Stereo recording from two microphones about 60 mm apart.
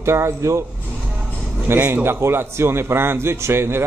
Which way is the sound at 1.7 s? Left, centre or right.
Right.